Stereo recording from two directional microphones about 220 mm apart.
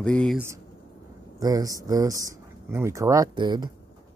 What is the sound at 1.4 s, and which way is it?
Speech, 15° right (ahead or behind).